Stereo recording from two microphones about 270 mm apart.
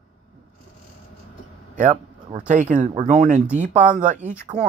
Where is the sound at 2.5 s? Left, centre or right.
Right.